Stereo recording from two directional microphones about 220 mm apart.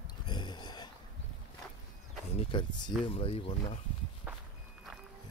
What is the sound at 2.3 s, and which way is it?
Speech, 25° left (ahead or behind).